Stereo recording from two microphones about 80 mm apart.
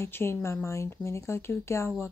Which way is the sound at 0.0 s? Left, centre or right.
Left.